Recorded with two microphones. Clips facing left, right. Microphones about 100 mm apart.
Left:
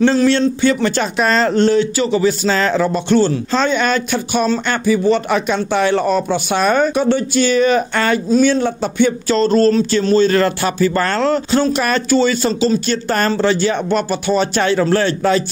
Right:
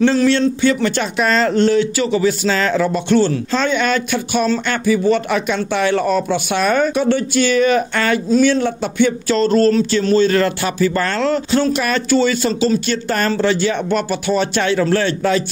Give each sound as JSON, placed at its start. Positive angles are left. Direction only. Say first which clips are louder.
{"t": 0.0, "sound": "speech", "louder": "left 1 dB", "side_deg": 30}